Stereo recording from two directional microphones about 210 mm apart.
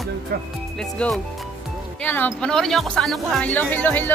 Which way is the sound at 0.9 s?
5° left (ahead or behind).